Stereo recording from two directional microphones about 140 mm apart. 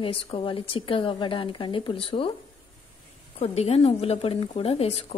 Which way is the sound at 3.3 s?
45° left (ahead or behind).